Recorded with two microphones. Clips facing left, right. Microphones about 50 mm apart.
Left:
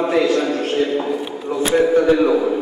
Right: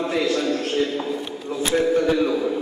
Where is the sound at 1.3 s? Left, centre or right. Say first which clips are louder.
Left 5 dB; centre.